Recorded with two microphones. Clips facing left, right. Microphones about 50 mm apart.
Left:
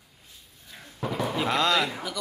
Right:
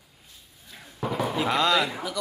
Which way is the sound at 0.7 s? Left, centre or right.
Centre.